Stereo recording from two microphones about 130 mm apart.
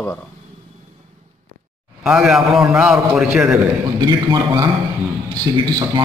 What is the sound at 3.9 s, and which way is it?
A man's voice, 35° right (ahead or behind).